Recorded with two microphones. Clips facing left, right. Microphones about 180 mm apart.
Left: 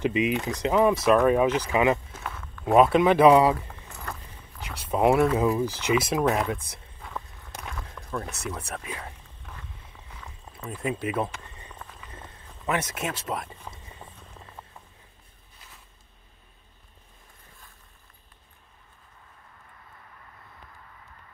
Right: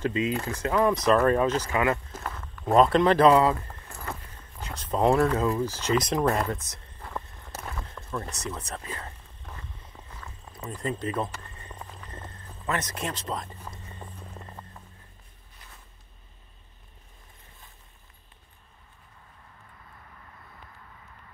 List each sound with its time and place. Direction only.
0.0 s speech: 15° left (ahead or behind)
0.9 s speech: 5° left (ahead or behind)
2.6 s speech: 5° left (ahead or behind)
7.0 s a sound: centre (ahead or behind)
10.2 s speech: 10° left (ahead or behind)
12.1 s a sound: 10° left (ahead or behind)
12.6 s speech: 10° left (ahead or behind)
13.7 s music: 5° left (ahead or behind)